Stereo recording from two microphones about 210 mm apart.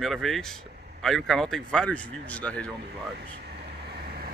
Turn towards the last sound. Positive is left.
turn(degrees=-45)  # may be behind; listen again after turning